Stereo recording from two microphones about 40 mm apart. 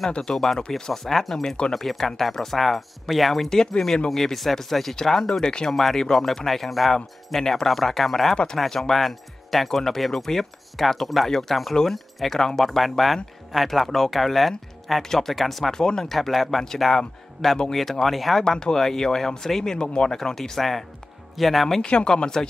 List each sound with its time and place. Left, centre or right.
0.3 s speech: centre
5.7 s speech: centre
15.7 s speech: centre
16.2 s speech: centre
16.4 s speech: centre
18.4 s speech: centre
20.2 s speech: centre
21.8 s speech: left